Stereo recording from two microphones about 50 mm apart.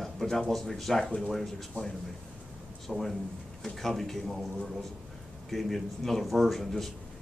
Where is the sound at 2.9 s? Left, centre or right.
Centre.